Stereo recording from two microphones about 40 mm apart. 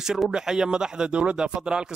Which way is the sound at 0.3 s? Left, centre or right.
Centre.